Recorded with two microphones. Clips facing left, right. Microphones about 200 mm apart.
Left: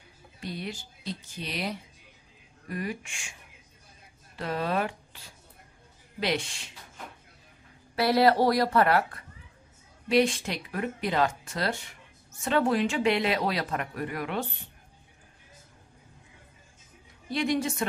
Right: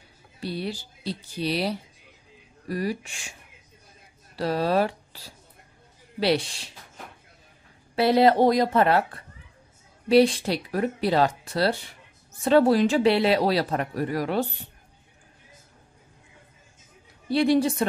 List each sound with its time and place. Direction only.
0.4 s speech: 35° right (ahead or behind)
4.4 s speech: 35° right (ahead or behind)
7.9 s speech: 25° right (ahead or behind)
17.3 s speech: 35° right (ahead or behind)